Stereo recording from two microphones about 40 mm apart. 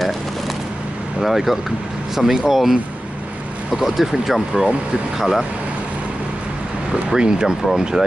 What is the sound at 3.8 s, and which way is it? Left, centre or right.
Speech, centre.